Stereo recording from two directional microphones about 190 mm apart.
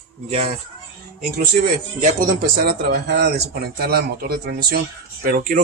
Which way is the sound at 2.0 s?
45° right (ahead or behind).